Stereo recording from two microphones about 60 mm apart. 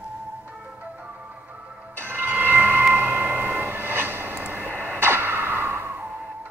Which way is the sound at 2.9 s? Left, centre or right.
Right.